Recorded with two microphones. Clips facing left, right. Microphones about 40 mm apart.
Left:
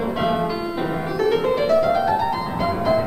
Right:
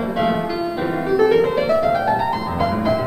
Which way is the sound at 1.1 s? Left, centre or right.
Centre.